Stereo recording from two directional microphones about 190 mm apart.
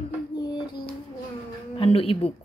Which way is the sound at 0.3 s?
20° left (ahead or behind).